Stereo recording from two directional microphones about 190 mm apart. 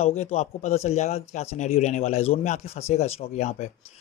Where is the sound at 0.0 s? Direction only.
35° left (ahead or behind).